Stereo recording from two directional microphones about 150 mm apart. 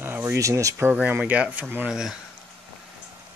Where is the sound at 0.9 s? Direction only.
10° right (ahead or behind).